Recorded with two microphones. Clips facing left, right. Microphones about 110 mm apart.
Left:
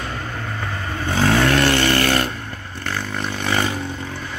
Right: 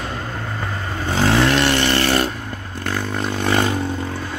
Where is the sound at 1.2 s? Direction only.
20° right (ahead or behind).